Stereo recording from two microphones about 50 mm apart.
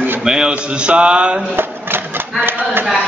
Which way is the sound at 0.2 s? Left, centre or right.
Centre.